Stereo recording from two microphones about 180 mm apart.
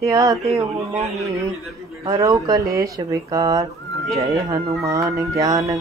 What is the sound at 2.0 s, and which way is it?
Speech, 20° right (ahead or behind).